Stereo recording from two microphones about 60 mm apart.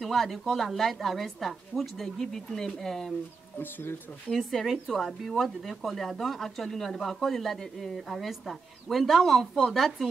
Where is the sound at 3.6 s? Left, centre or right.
Left.